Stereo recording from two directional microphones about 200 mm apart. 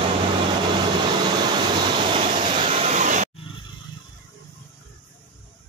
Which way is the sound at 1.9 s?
25° right (ahead or behind).